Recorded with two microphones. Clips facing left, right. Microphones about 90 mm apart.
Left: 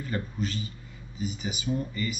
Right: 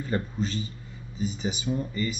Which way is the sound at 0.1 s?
30° right (ahead or behind).